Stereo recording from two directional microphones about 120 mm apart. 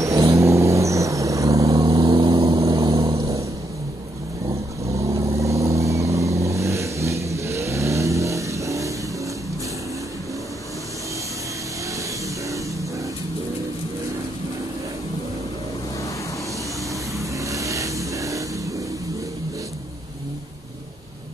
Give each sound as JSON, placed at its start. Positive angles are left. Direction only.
{"t": 0.0, "sound": "vehicle", "side_deg": -25}
{"t": 4.5, "sound": "vehicle", "side_deg": -25}
{"t": 17.5, "sound": "vehicle", "side_deg": -25}